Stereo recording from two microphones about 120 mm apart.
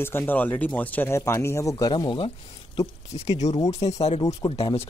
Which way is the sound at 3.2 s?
70° left (ahead or behind).